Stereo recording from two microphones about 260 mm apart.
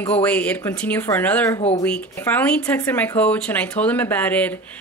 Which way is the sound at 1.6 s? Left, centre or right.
Left.